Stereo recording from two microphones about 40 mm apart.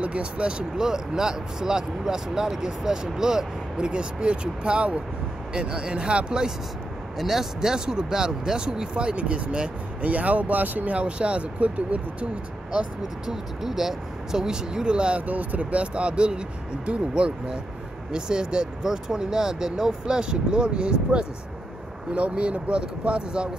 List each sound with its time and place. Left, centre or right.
0.0 s speech: right
7.2 s speech: centre; by 9.7 s right
10.0 s speech: right
10.9 s speech: right
13.3 s speech: centre; by 15.2 s right
15.2 s speech: right